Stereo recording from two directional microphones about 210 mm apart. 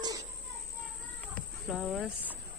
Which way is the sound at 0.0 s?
15° right (ahead or behind).